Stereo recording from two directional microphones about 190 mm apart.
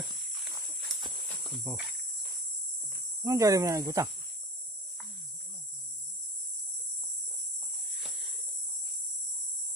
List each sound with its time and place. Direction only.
0.0 s horse: centre (ahead or behind)
1.3 s cricket: centre (ahead or behind)
3.3 s speech: 15° right (ahead or behind)